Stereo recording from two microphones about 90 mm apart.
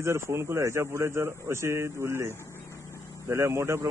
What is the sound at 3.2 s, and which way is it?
Speech, 30° right (ahead or behind).